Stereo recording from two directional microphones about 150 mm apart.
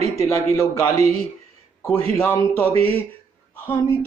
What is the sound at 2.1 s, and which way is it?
A man's voice, 15° left (ahead or behind).